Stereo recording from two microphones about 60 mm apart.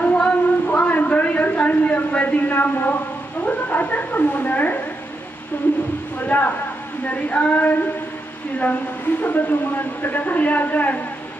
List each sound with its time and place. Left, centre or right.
0.0 s a sound: left
3.4 s speech: left
6.2 s speech: left
9.2 s speech: left